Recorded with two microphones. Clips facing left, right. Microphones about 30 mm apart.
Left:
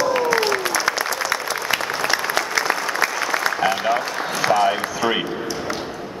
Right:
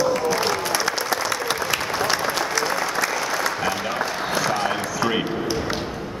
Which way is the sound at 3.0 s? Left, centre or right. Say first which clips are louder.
Left 2 dB; left.